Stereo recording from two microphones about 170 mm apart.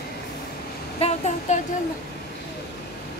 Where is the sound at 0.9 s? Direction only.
35° left (ahead or behind).